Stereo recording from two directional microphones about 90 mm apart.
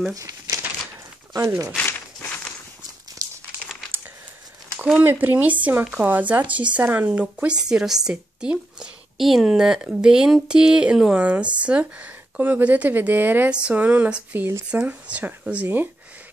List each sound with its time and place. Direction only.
0.1 s speech: 40° right (ahead or behind)
5.0 s a woman's voice: 20° right (ahead or behind)
13.5 s a woman's voice: 10° right (ahead or behind)